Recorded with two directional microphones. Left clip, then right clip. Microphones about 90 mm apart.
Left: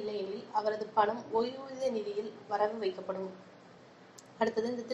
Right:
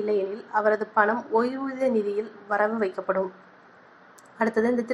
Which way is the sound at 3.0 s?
35° right (ahead or behind).